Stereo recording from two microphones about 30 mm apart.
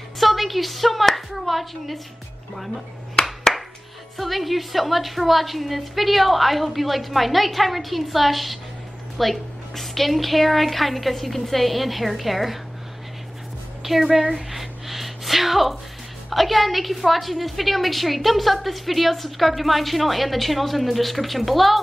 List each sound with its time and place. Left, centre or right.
0.2 s a woman's voice: centre
3.2 s clapping: left
4.2 s a woman's voice: centre
13.8 s a woman's voice: centre
14.5 s a sound: centre
16.3 s a woman's voice: centre